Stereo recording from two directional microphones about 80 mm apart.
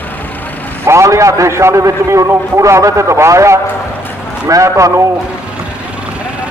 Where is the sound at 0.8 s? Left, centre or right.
Right.